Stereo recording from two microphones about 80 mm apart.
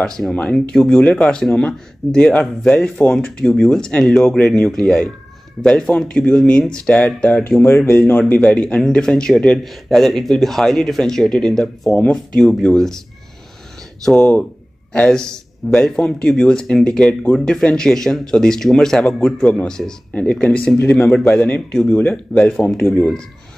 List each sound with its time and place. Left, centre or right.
0.0 s speech: centre
3.4 s speech: centre
7.6 s speech: left
8.2 s speech: centre
14.0 s speech: centre